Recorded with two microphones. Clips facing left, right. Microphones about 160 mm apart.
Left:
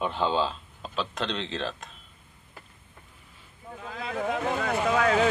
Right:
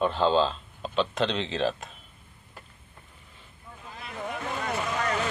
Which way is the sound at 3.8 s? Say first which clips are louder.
Left 6 dB; 90° left.